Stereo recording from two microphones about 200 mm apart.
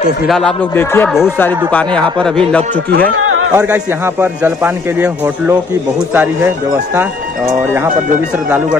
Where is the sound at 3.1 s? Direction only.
90° right.